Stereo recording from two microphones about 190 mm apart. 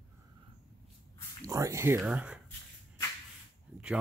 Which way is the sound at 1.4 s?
15° right (ahead or behind).